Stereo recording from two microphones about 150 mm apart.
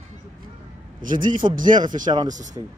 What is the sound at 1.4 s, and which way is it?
Speech, 35° right (ahead or behind).